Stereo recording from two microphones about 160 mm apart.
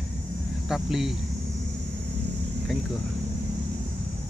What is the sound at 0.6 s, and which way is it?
Speech, centre (ahead or behind).